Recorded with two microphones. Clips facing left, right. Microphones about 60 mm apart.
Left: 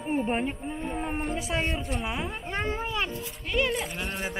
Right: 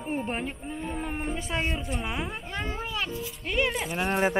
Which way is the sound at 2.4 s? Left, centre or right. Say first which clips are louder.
Left 3 dB; left.